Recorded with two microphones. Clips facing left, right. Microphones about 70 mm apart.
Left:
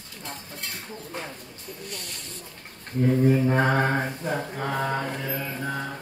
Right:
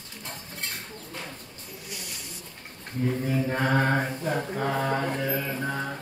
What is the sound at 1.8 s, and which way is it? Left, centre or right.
Speech, centre.